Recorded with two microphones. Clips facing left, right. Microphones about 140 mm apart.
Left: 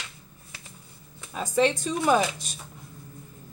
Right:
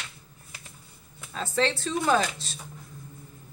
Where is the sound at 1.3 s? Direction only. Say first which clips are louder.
Left 3 dB; 15° left (ahead or behind).